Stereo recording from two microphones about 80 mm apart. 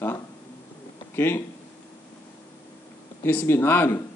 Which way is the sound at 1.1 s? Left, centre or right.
Left.